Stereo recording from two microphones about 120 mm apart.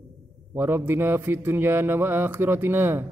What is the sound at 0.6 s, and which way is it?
Mantra, 20° right (ahead or behind).